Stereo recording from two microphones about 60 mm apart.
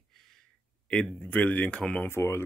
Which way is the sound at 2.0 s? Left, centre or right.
Left.